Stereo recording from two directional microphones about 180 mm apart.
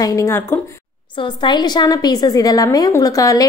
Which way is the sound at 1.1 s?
25° left (ahead or behind).